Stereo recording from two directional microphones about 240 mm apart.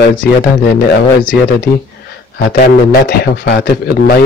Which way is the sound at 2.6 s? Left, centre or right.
Left.